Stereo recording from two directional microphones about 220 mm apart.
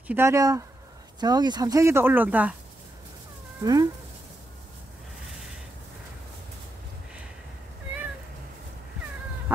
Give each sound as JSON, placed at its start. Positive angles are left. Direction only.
{"t": 0.1, "sound": "speech", "side_deg": -10}
{"t": 3.6, "sound": "speech", "side_deg": -15}